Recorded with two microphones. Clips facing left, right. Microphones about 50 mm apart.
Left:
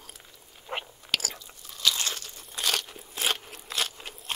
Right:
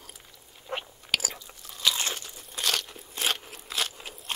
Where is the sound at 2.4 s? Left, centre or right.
Centre.